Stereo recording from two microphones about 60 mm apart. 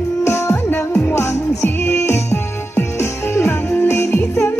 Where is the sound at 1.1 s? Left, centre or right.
Left.